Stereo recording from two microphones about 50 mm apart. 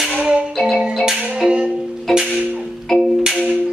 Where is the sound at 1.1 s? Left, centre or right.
Centre.